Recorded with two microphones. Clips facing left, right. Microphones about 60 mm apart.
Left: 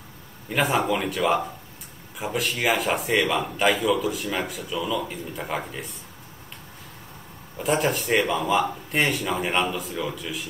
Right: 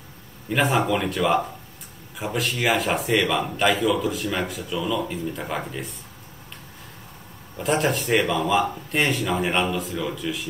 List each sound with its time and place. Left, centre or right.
0.5 s speech: centre
7.5 s speech: centre